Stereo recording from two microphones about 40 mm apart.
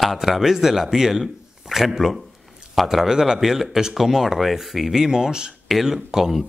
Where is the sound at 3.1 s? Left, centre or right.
Centre.